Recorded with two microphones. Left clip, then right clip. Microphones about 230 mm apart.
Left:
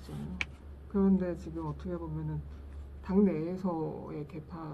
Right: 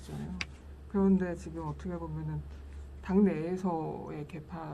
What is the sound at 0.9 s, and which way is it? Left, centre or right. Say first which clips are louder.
Speech: right 1 dB; right.